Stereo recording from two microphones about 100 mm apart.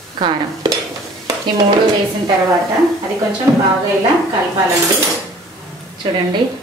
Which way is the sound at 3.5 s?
25° right (ahead or behind).